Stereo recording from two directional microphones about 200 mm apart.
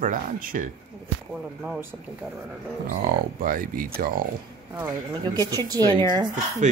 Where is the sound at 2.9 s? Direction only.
50° right (ahead or behind).